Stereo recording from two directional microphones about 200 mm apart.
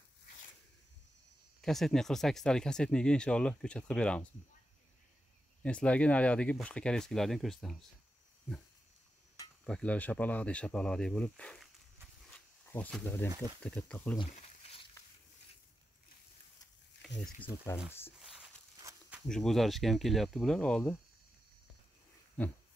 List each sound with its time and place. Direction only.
1.6 s speech: centre (ahead or behind)
5.6 s speech: 5° left (ahead or behind)
9.7 s speech: 5° left (ahead or behind)
12.3 s a sound: 5° left (ahead or behind)
13.3 s speech: 20° right (ahead or behind)
13.6 s speech: 5° left (ahead or behind)
14.2 s a sound: 30° left (ahead or behind)
18.2 s a sound: 5° right (ahead or behind)
18.8 s walk: 10° right (ahead or behind)
19.2 s speech: centre (ahead or behind)